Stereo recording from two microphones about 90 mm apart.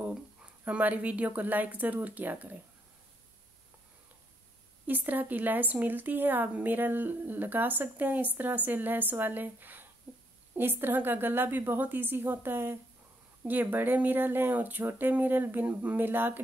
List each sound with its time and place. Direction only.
0.7 s speech: 15° right (ahead or behind)
4.8 s a woman's voice: 20° right (ahead or behind)